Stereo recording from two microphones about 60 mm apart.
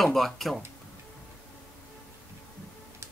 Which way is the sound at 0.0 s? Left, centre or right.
Centre.